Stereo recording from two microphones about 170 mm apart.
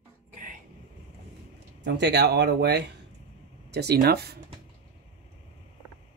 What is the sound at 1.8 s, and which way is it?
Speech, 90° right.